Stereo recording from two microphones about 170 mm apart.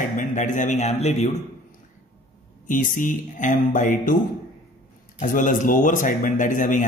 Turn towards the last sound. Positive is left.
turn(degrees=50)  # may be behind; listen again after turning